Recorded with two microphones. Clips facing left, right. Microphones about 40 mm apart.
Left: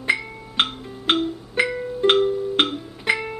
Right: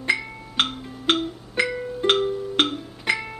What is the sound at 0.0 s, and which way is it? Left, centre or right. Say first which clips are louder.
Music: left 1 dB; centre.